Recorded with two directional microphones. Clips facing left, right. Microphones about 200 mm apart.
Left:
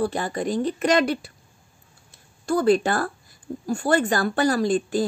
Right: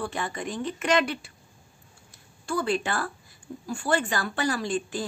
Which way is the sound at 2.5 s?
40° left (ahead or behind).